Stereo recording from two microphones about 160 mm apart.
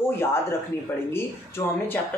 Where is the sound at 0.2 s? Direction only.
15° left (ahead or behind).